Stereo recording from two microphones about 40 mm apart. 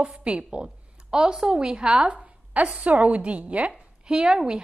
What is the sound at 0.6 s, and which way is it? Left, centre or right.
Speech, centre.